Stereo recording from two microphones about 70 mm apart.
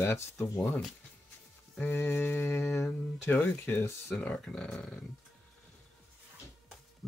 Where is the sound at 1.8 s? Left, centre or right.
Left.